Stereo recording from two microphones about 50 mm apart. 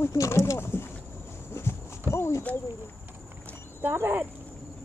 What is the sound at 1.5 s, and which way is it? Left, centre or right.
Clip-clop, left.